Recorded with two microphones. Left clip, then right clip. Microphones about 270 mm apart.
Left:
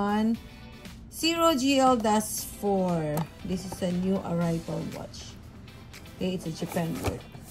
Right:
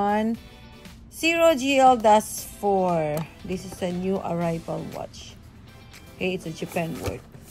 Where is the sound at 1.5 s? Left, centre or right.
Centre.